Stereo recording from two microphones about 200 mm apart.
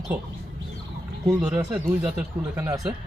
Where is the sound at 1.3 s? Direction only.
5° right (ahead or behind).